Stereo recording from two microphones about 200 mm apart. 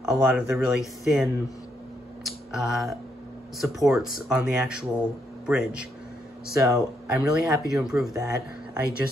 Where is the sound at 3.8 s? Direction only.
5° right (ahead or behind).